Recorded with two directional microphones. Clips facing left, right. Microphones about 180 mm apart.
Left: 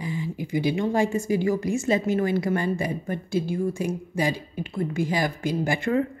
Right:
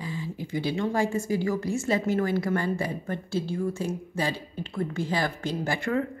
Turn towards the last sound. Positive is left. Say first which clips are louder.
# left 4 dB
turn(degrees=20)  # may be behind; listen again after turning